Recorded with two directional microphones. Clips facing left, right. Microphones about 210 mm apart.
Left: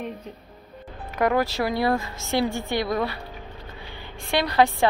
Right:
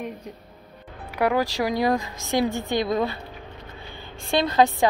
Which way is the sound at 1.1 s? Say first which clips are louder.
Even; 10° right (ahead or behind).